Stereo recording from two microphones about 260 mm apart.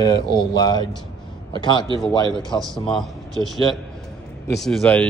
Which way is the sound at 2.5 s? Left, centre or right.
Centre.